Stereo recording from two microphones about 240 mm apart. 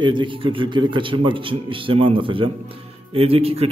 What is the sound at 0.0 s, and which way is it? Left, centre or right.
A man's voice, centre.